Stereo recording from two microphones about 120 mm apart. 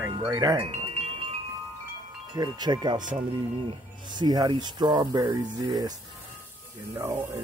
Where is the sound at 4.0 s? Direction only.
40° right (ahead or behind).